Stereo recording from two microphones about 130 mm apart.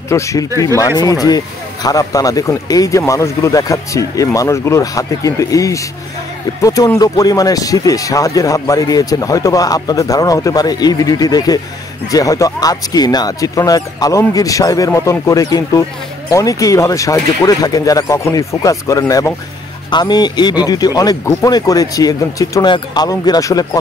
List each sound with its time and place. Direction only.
0.1 s speech: 25° left (ahead or behind)